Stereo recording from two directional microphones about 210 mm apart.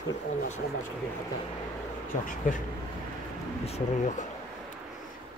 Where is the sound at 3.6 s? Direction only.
30° left (ahead or behind).